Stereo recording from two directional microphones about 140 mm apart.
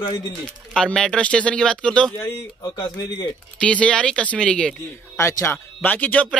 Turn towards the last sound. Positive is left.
turn(degrees=10)  # may be behind; listen again after turning